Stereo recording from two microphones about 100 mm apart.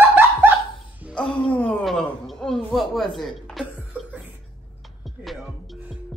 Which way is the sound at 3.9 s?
15° right (ahead or behind).